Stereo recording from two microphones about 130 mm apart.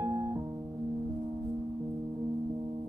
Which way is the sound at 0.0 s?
25° right (ahead or behind).